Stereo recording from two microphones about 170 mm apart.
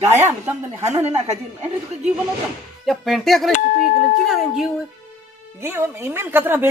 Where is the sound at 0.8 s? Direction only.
40° right (ahead or behind).